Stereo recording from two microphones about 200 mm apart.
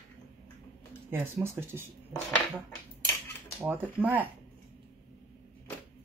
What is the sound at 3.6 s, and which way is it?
Speech, 10° right (ahead or behind).